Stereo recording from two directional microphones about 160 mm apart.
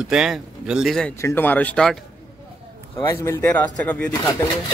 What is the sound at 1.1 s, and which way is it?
Speech, 15° left (ahead or behind).